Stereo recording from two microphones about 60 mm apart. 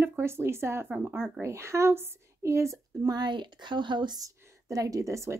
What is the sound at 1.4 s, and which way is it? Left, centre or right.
Speech, right.